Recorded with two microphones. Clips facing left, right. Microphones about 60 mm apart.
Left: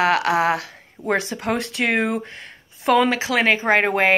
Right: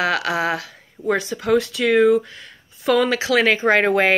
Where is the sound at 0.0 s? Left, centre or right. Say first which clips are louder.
Left 3 dB; left.